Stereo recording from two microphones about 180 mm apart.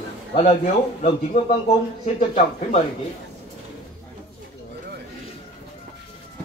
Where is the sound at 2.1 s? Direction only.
40° left (ahead or behind).